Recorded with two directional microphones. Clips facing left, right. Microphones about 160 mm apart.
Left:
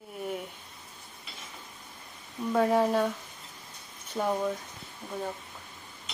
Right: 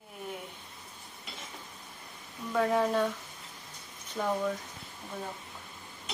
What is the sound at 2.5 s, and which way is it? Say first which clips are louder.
Speech: left 3 dB; 30° left (ahead or behind).